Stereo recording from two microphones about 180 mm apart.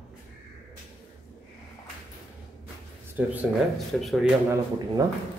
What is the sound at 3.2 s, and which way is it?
A man's voice, 10° right (ahead or behind).